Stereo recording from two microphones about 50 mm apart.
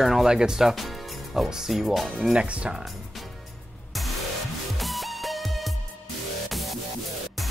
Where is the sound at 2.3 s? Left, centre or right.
Right.